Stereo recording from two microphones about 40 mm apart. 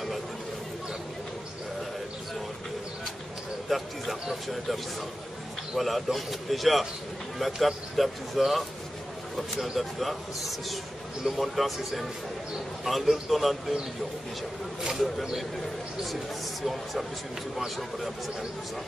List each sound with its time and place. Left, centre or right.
3.6 s speech: centre
5.8 s speech: centre
12.8 s speech: centre
14.8 s speech: centre
17.6 s speech: centre